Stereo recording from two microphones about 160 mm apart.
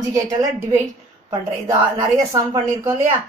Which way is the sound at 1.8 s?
20° right (ahead or behind).